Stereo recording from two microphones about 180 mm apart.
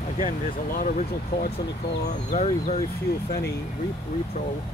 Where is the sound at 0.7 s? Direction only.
50° left (ahead or behind).